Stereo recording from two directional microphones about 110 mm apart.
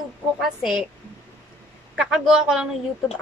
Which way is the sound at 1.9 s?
5° right (ahead or behind).